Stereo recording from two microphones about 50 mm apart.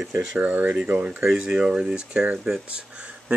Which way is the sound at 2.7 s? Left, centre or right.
Right.